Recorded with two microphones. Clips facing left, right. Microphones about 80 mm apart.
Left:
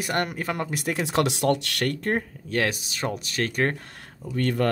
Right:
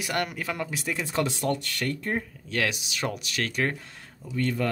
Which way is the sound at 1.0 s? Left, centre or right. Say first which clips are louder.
Left 5 dB; left.